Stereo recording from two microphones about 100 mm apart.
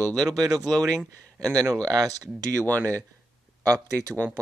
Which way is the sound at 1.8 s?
40° right (ahead or behind).